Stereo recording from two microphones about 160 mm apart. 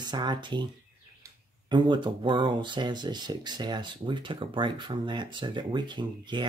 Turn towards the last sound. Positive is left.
turn(degrees=-30)  # may be behind; listen again after turning